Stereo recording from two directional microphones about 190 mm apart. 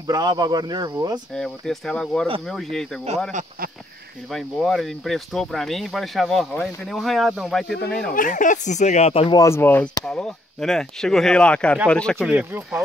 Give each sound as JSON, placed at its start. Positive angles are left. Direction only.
{"t": 0.0, "sound": "speech", "side_deg": -20}
{"t": 1.3, "sound": "speech", "side_deg": 5}
{"t": 4.3, "sound": "speech", "side_deg": 0}
{"t": 7.6, "sound": "speech", "side_deg": 60}
{"t": 8.1, "sound": "speech", "side_deg": 45}
{"t": 9.4, "sound": "speech", "side_deg": 15}
{"t": 12.2, "sound": "speech", "side_deg": -10}